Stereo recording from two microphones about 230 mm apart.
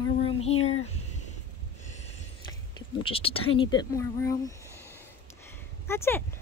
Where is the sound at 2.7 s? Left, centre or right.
Left.